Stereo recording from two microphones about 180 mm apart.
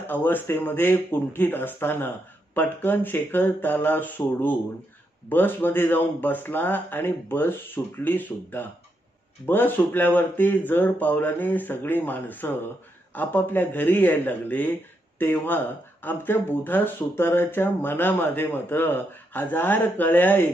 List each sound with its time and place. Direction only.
0.0 s speech: 10° left (ahead or behind)